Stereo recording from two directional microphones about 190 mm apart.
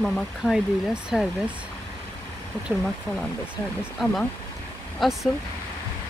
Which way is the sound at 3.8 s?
Centre (ahead or behind).